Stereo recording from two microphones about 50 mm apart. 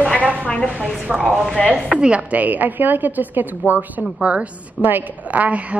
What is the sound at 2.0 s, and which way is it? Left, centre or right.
A woman's voice, right.